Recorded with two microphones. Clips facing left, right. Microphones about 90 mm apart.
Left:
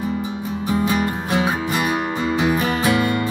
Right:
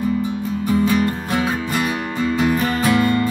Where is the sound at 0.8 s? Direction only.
15° left (ahead or behind).